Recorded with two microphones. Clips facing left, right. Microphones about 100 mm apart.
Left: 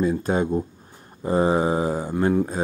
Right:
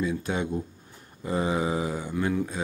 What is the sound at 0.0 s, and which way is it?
Speech, 40° left (ahead or behind).